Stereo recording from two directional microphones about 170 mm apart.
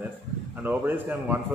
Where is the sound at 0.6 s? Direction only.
10° right (ahead or behind).